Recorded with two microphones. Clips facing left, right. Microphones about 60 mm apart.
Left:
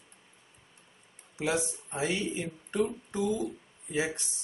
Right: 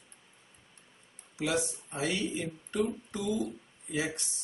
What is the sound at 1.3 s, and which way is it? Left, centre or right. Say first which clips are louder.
Speech: left 1 dB; left.